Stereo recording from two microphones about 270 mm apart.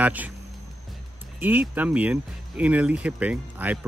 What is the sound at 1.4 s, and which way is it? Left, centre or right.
Speech, centre.